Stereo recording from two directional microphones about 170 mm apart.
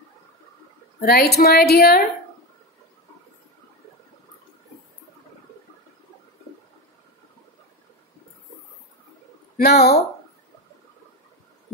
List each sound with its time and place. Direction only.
1.0 s a woman's voice: 65° left (ahead or behind)
9.6 s speech: 70° left (ahead or behind)